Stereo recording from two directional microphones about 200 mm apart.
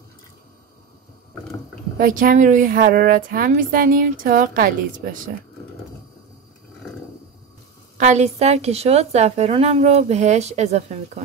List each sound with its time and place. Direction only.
2.0 s a woman's voice: 45° right (ahead or behind)
8.0 s a woman's voice: 35° right (ahead or behind)